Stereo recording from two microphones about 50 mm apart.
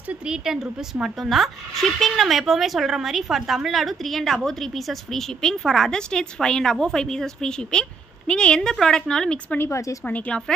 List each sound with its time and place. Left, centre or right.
0.3 s a woman's voice: centre
9.6 s speech: left
10.0 s speech: left